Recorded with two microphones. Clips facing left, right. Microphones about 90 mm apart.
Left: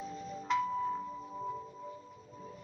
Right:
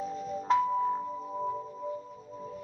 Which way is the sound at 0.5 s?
35° right (ahead or behind).